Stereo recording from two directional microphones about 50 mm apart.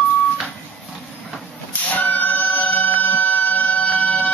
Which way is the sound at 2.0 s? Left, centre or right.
Left.